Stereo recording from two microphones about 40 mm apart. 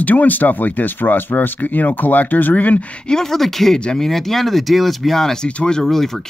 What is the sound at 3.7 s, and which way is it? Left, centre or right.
Speech, left.